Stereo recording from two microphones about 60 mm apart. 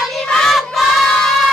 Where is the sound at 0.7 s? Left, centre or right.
Centre.